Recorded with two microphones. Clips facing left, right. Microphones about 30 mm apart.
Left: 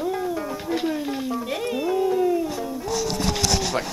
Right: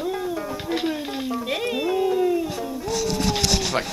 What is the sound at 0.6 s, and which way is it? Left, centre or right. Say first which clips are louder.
Music: right 1 dB; centre.